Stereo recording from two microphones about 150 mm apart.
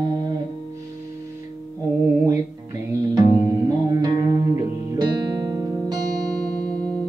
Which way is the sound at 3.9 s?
25° right (ahead or behind).